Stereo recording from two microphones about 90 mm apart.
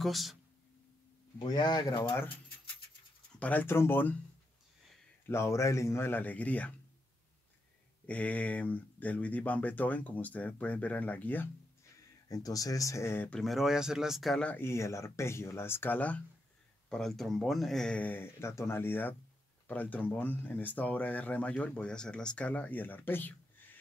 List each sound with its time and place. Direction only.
0.0 s speech: centre (ahead or behind)
1.4 s speech: 50° left (ahead or behind)
3.3 s speech: 15° left (ahead or behind)
3.6 s speech: 25° left (ahead or behind)
5.3 s speech: 30° left (ahead or behind); by 6.7 s 15° left (ahead or behind)
8.1 s speech: 15° left (ahead or behind)
12.3 s speech: 40° left (ahead or behind)
13.3 s speech: centre (ahead or behind)
14.6 s speech: 30° left (ahead or behind)
16.9 s speech: 5° left (ahead or behind); by 23.8 s 20° left (ahead or behind)